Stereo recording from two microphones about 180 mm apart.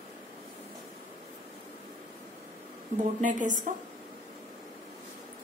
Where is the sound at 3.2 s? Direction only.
45° right (ahead or behind).